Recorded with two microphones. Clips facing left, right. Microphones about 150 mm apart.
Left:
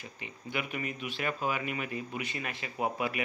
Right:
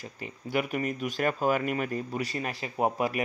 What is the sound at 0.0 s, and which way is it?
Speech, 40° right (ahead or behind).